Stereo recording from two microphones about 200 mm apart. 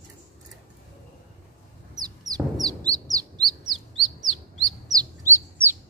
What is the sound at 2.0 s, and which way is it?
Bird, 20° right (ahead or behind).